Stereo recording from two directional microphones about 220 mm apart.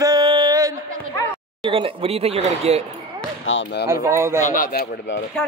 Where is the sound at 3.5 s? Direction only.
55° left (ahead or behind).